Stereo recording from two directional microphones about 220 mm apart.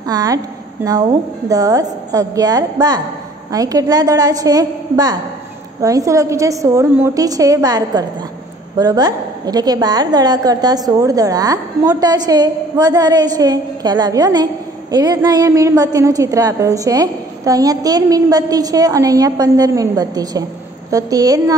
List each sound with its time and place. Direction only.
0.1 s a woman's voice: 15° right (ahead or behind)